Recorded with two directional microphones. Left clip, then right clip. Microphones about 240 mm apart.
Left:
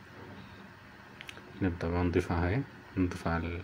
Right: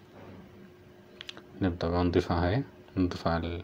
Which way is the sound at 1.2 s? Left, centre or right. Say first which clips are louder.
Right 2 dB; centre.